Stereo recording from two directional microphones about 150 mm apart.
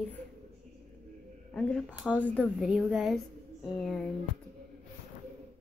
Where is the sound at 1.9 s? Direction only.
10° right (ahead or behind).